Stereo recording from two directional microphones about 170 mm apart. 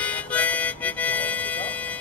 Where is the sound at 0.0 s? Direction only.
10° left (ahead or behind).